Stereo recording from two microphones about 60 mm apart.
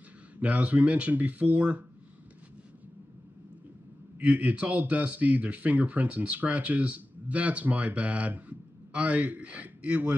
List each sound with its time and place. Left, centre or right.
0.4 s speech: right
4.2 s speech: right